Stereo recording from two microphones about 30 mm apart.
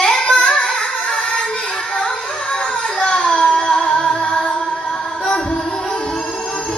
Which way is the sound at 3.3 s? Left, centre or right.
Left.